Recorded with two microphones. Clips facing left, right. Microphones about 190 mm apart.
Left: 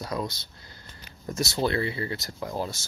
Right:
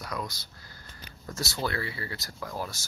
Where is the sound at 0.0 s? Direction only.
25° left (ahead or behind).